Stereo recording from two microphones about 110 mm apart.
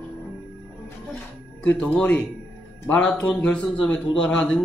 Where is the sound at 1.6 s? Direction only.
10° left (ahead or behind).